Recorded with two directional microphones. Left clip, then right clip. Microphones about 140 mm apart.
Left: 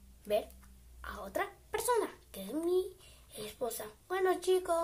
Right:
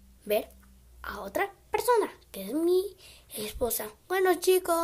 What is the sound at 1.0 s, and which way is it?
A child's voice, 50° right (ahead or behind).